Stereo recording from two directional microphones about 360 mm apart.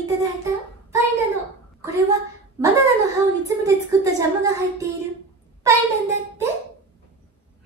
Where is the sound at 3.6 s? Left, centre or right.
Centre.